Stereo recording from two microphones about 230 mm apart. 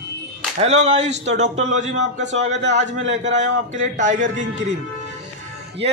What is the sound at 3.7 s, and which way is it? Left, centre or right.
Speech, right.